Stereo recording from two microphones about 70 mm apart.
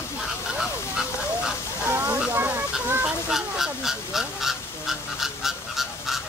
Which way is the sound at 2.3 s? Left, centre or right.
Right.